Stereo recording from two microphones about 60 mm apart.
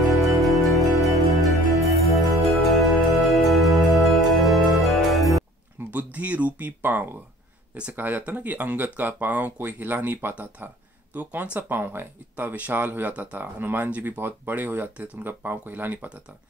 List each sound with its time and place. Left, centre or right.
0.1 s music: centre
5.8 s speech: right
13.1 s speech: right
13.4 s speech: right